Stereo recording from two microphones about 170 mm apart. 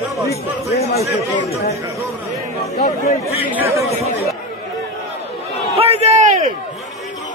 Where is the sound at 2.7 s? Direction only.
65° left (ahead or behind).